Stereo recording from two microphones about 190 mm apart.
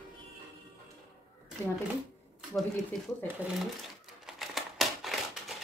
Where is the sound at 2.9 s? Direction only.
Centre (ahead or behind).